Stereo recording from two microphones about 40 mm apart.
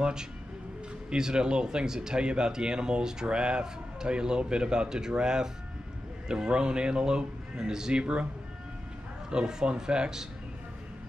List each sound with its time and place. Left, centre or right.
0.0 s speech: centre
9.3 s speech: centre